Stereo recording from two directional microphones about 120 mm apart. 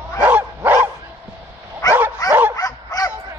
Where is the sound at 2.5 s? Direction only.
30° left (ahead or behind).